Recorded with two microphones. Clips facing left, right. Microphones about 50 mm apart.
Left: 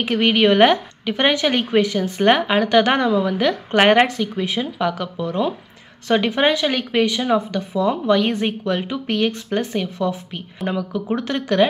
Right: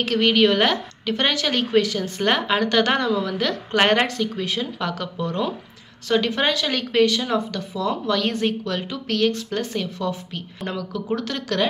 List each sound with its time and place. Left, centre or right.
0.0 s a woman's voice: left
6.0 s speech: left